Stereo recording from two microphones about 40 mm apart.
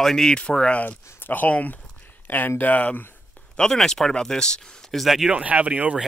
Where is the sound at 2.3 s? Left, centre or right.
Left.